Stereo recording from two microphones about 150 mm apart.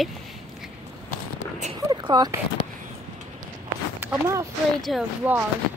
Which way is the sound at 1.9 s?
30° right (ahead or behind).